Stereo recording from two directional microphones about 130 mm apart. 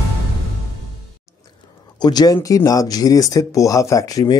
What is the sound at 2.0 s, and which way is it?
Speech, 30° left (ahead or behind).